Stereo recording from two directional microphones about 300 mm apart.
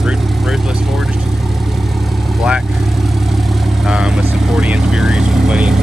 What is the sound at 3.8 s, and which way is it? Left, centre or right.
Speech, centre.